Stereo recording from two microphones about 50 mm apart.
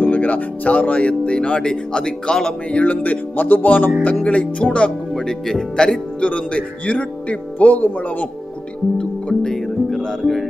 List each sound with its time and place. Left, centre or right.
0.0 s speech: left; by 2.5 s centre
2.7 s speech: left
5.1 s speech: centre
6.2 s speech: left
9.4 s music: centre